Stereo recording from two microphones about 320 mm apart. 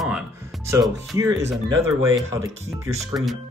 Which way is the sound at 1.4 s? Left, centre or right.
Right.